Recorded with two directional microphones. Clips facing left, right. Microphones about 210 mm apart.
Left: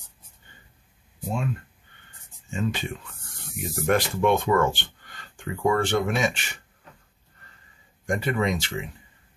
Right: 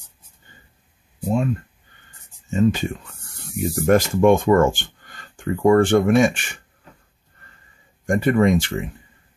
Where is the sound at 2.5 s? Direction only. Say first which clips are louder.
Right 9 dB; 40° right (ahead or behind).